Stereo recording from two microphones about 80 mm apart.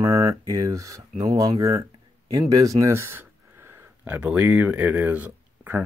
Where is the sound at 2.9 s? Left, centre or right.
Right.